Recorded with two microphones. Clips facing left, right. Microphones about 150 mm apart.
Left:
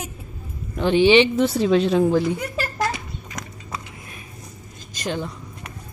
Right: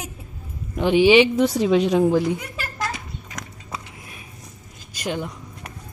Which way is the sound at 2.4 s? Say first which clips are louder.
Left 5 dB; 40° left (ahead or behind).